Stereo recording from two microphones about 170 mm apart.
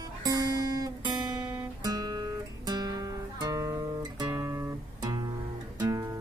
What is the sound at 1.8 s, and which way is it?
Guitar, 20° right (ahead or behind).